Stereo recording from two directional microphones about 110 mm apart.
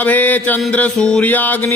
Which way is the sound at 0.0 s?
15° left (ahead or behind).